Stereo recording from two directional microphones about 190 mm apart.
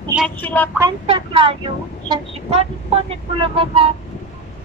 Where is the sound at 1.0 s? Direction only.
30° right (ahead or behind).